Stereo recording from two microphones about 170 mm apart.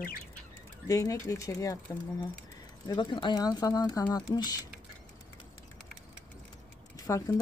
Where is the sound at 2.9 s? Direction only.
25° left (ahead or behind).